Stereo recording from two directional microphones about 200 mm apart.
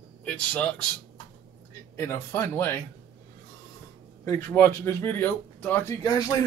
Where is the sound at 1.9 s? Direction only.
15° left (ahead or behind).